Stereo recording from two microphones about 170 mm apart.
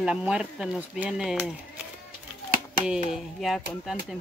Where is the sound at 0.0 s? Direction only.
5° right (ahead or behind).